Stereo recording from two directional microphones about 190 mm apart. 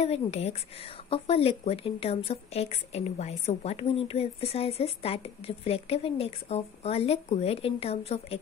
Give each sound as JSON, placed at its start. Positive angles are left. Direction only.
{"t": 0.0, "sound": "a woman's voice", "side_deg": 35}